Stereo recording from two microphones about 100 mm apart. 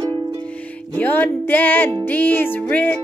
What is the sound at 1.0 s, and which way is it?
Music, 20° left (ahead or behind).